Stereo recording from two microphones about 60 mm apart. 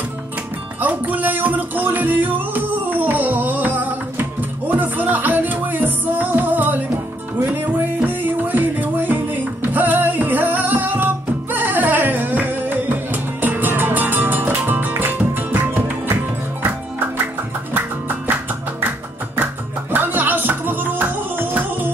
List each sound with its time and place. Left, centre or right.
0.7 s music: right
19.4 s music: right